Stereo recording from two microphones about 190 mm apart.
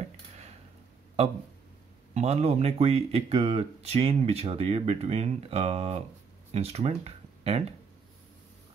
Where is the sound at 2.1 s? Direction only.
35° right (ahead or behind).